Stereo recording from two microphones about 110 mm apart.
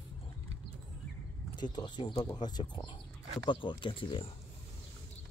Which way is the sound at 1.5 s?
40° left (ahead or behind).